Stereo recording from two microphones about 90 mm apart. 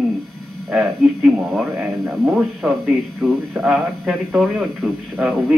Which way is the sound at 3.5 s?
10° right (ahead or behind).